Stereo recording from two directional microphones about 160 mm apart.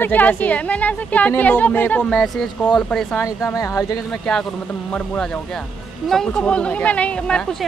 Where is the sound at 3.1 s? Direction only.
20° left (ahead or behind).